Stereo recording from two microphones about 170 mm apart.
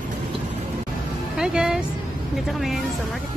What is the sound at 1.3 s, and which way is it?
Speech, 5° right (ahead or behind).